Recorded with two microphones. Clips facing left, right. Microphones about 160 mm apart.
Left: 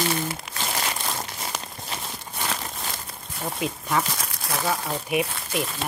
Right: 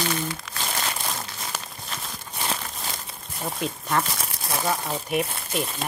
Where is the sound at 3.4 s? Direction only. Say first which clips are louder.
Left 1 dB; 5° left (ahead or behind).